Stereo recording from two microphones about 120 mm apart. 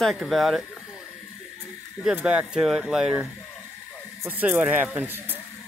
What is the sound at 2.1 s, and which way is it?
Speech, 5° right (ahead or behind).